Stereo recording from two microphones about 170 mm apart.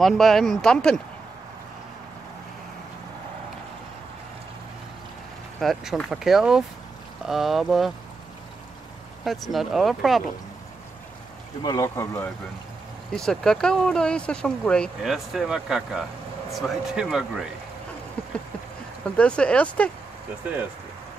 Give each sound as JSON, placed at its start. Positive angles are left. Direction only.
{"t": 0.0, "sound": "speech", "side_deg": 0}
{"t": 5.6, "sound": "speech", "side_deg": 0}
{"t": 9.2, "sound": "speech", "side_deg": 0}
{"t": 11.6, "sound": "speech", "side_deg": 20}
{"t": 13.1, "sound": "speech", "side_deg": 5}
{"t": 19.1, "sound": "speech", "side_deg": 5}